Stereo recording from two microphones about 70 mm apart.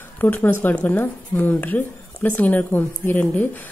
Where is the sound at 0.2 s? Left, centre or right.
Left.